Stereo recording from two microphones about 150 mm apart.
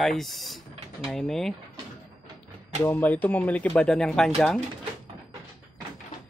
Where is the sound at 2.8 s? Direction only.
10° left (ahead or behind).